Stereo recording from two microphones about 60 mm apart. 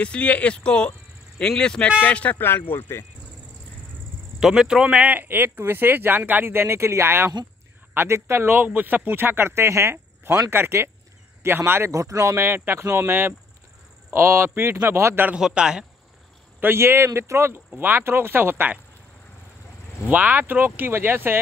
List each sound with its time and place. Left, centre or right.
0.0 s speech: left
2.4 s speech: left
4.4 s speech: centre
5.0 s speech: right
11.9 s speech: right
12.4 s speech: right
15.3 s speech: centre
16.7 s speech: right
17.7 s speech: right
20.1 s speech: right